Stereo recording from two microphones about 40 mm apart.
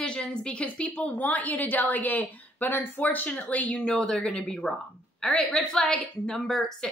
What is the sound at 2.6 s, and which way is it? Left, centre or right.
Speech, left.